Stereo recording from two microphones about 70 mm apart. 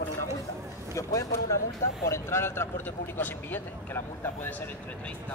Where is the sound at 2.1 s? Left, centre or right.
Left.